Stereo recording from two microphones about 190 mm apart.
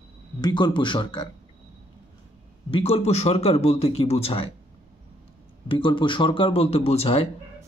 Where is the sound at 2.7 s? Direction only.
30° left (ahead or behind).